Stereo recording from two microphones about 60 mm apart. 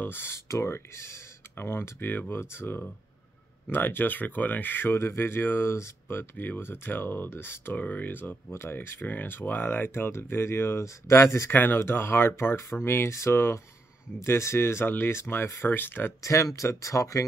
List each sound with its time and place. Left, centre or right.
0.0 s speech: left
0.5 s speech: left
2.2 s speech: left
7.7 s speech: left
11.5 s speech: left
16.2 s speech: left